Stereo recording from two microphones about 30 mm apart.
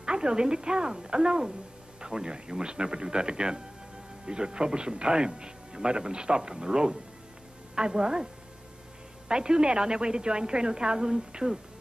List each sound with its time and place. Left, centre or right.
0.0 s a man's voice: right
9.3 s a man's voice: right